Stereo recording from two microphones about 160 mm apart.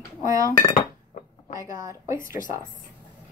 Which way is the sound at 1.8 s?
20° right (ahead or behind).